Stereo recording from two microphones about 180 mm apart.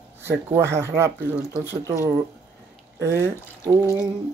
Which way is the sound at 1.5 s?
15° left (ahead or behind).